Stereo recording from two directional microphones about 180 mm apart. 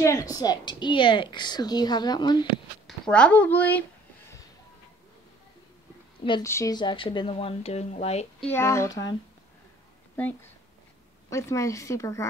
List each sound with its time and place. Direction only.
0.0 s a woman's voice: 15° left (ahead or behind)
2.9 s speech: 5° left (ahead or behind)
6.4 s speech: 15° left (ahead or behind); by 8.3 s 35° left (ahead or behind)
8.4 s speech: 10° left (ahead or behind)
10.1 s speech: 10° left (ahead or behind)